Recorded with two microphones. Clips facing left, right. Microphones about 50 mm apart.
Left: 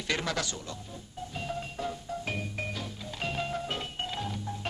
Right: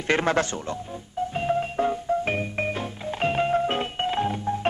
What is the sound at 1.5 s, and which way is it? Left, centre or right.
Music, right.